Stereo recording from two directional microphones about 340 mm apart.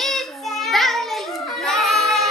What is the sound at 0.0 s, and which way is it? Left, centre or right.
Child singing, centre.